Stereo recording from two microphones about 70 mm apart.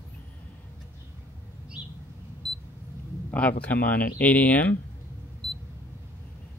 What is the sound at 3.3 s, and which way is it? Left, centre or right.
Speech, centre.